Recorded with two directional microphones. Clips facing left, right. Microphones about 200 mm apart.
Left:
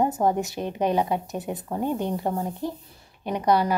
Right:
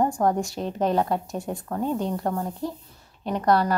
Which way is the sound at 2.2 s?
5° left (ahead or behind).